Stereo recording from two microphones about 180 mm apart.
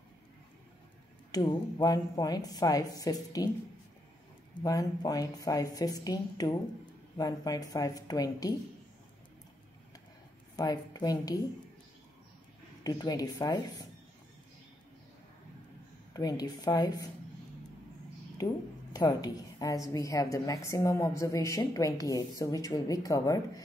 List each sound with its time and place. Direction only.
1.3 s a woman's voice: 20° left (ahead or behind)
4.6 s a woman's voice: 20° left (ahead or behind)
10.5 s a woman's voice: 20° left (ahead or behind)
12.8 s a woman's voice: 20° left (ahead or behind)
16.1 s a woman's voice: 20° left (ahead or behind)
18.9 s a woman's voice: 20° left (ahead or behind)